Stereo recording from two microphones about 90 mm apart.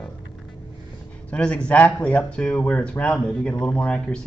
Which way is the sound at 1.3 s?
10° left (ahead or behind).